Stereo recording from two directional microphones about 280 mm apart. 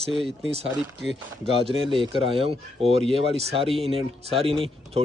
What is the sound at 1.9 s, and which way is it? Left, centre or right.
Speech, centre.